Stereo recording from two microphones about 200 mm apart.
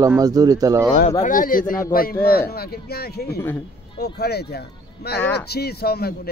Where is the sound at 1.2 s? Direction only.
45° left (ahead or behind).